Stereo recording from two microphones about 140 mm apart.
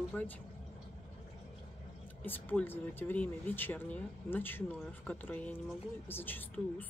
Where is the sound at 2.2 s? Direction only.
15° left (ahead or behind).